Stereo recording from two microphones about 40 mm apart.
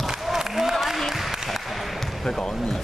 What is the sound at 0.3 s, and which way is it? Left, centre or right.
Applause, centre.